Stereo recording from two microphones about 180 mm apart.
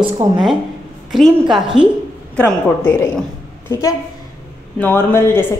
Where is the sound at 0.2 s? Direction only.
15° right (ahead or behind).